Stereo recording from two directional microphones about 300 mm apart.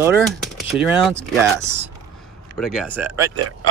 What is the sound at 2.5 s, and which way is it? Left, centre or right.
Speech, centre.